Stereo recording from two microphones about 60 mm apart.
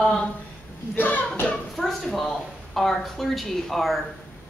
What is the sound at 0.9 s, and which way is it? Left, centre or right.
Speech, left.